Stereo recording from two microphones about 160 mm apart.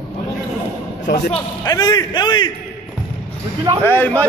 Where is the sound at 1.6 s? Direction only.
25° left (ahead or behind).